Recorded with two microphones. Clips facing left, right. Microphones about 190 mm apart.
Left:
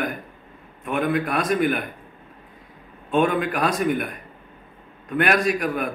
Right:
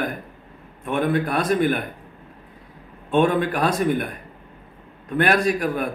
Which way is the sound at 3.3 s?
30° right (ahead or behind).